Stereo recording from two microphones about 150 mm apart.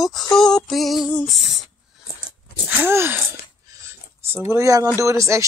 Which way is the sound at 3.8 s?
15° right (ahead or behind).